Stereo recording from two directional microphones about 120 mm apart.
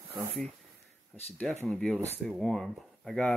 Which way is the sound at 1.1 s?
5° left (ahead or behind).